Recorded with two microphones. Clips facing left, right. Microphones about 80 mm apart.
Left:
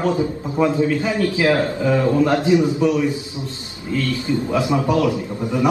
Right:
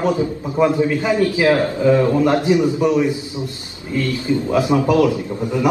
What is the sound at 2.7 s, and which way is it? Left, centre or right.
A man's voice, right.